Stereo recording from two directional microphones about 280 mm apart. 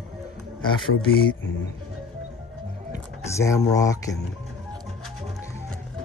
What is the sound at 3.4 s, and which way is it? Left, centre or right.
Speech, centre.